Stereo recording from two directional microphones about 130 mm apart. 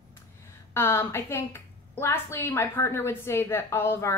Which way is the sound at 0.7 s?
20° left (ahead or behind).